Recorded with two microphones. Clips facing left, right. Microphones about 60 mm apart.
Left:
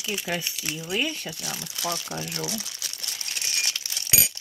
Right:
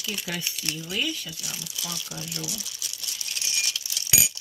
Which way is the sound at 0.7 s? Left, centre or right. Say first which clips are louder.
Left 2 dB; left.